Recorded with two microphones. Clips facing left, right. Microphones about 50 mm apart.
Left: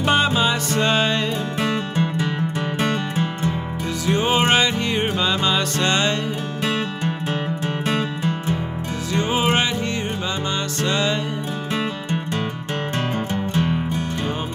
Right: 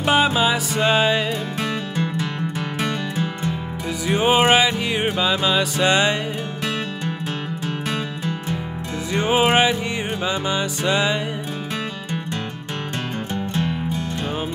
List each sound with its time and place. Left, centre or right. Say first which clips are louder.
0.0 s music: right 1 dB; centre
1.6 s music: left 5 dB; left
4.0 s music: right 2 dB; centre
6.6 s music: left 4 dB; centre
8.2 s music: left 3 dB; left
9.1 s music: right 3 dB; centre